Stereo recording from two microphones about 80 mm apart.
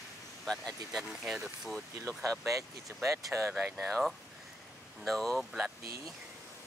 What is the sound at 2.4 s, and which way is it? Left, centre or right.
Speech, right.